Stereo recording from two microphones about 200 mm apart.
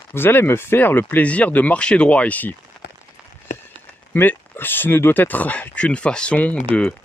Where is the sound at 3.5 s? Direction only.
40° left (ahead or behind).